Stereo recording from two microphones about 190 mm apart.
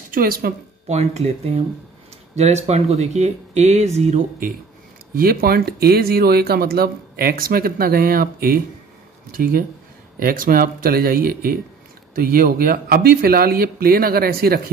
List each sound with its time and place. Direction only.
0.1 s speech: 50° right (ahead or behind)
0.8 s speech: 35° right (ahead or behind); by 14.6 s 55° right (ahead or behind)